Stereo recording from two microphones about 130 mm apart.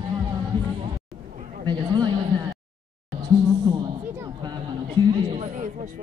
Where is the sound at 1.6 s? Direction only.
35° right (ahead or behind).